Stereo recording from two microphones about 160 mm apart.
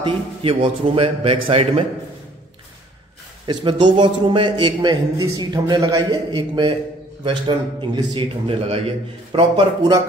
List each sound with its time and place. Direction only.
0.0 s a man's voice: 35° right (ahead or behind)
3.5 s a man's voice: 25° right (ahead or behind)